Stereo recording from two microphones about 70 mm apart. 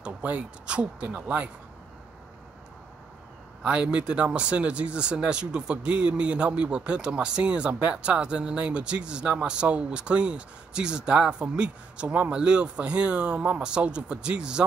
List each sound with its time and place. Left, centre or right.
0.0 s speech: centre
3.6 s speech: centre